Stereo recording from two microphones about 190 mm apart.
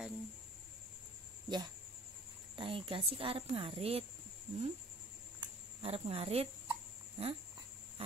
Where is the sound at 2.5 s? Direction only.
25° right (ahead or behind).